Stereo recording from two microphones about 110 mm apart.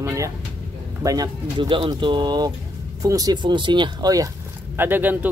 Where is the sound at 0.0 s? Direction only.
25° right (ahead or behind).